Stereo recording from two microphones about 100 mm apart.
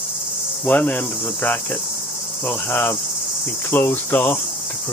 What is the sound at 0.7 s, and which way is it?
Cricket, 15° left (ahead or behind).